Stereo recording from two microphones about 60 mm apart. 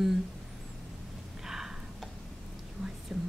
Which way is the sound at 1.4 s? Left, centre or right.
Centre.